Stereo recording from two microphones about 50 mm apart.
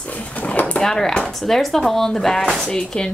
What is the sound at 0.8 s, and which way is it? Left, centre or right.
A woman's voice, centre.